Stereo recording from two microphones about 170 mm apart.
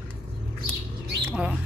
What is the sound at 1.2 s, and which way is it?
Bird, 5° right (ahead or behind).